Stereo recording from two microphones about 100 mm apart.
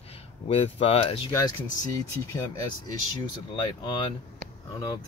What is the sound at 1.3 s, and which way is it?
Speech, 35° left (ahead or behind).